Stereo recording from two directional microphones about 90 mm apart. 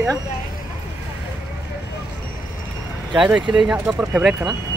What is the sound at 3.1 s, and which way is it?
Speech, 10° right (ahead or behind).